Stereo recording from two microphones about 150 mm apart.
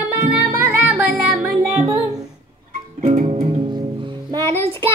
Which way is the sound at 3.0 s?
45° right (ahead or behind).